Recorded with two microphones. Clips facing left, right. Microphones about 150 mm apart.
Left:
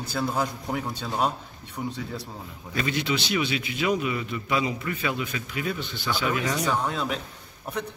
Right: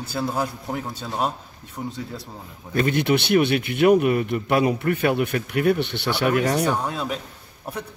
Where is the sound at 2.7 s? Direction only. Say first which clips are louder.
Right 7 dB; 55° right (ahead or behind).